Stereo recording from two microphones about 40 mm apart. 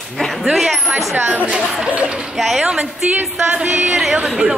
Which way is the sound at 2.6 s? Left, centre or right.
Right.